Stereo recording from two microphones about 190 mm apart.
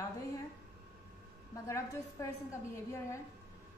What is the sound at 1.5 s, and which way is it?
Speech, 15° left (ahead or behind).